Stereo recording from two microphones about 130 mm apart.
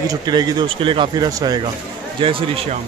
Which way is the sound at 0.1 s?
30° right (ahead or behind).